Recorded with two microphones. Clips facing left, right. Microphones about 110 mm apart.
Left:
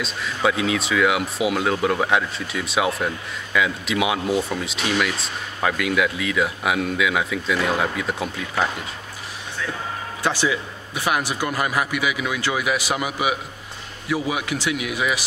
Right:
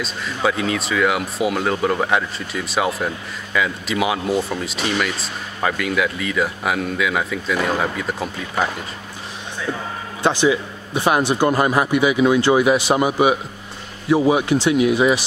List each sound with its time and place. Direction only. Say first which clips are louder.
0.0 s speech: right 1 dB; centre (ahead or behind)
10.2 s a man's voice: right 6 dB; 20° right (ahead or behind)